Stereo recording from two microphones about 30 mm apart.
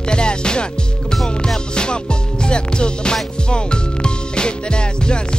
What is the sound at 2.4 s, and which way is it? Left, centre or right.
Music, left.